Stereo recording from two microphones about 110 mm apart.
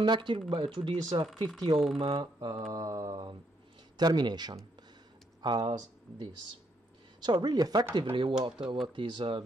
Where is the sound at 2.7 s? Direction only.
30° right (ahead or behind).